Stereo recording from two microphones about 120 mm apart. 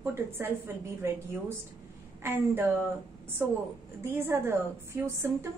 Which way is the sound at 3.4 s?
20° right (ahead or behind).